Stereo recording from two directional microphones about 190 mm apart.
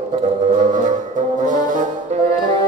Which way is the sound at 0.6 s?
40° right (ahead or behind).